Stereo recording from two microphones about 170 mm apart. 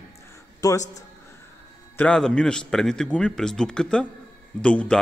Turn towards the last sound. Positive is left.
turn(degrees=5)  # may be behind; listen again after turning